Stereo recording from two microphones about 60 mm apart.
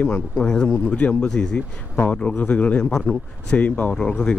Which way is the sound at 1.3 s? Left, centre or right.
Centre.